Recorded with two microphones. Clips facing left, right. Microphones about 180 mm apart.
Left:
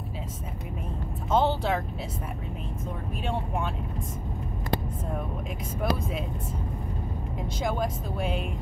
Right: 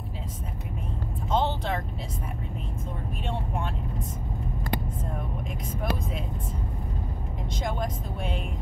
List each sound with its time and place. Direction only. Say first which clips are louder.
1.3 s speech: left 3 dB; 10° left (ahead or behind)
7.6 s speech: left 3 dB; 5° left (ahead or behind)